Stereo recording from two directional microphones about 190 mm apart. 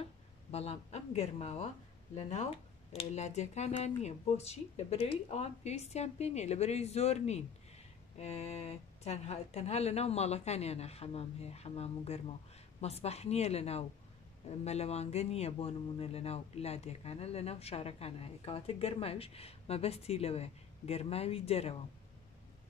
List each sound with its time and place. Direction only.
0.5 s speech: 35° left (ahead or behind)